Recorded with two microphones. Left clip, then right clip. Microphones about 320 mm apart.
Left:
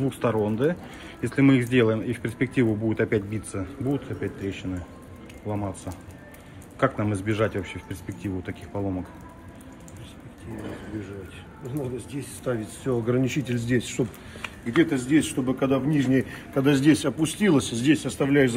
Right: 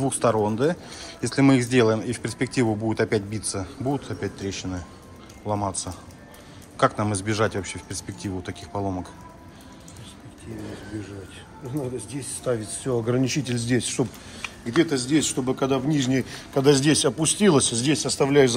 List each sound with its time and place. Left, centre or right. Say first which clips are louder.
0.0 s speech: right 3 dB; centre
6.8 s speech: right 3 dB; centre
12.1 s speech: right 3 dB; right
15.0 s a man's voice: even; right
15.4 s speech: right 1 dB; centre